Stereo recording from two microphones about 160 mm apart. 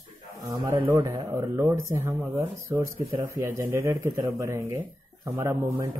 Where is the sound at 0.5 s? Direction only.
30° right (ahead or behind).